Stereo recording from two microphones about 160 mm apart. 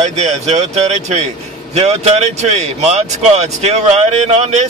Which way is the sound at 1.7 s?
40° right (ahead or behind).